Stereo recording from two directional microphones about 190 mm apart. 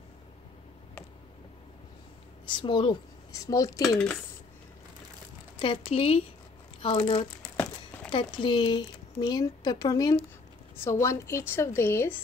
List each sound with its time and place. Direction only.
2.4 s speech: 25° left (ahead or behind)
5.6 s a woman's voice: 30° left (ahead or behind); by 12.2 s 10° left (ahead or behind)